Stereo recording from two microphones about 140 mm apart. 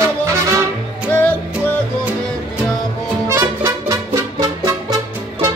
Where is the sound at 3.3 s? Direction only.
20° right (ahead or behind).